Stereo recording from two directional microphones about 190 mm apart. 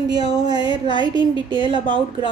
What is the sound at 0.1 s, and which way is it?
A woman's voice, 20° right (ahead or behind).